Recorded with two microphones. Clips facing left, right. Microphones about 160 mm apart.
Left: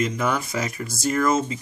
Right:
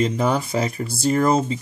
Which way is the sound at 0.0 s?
35° right (ahead or behind).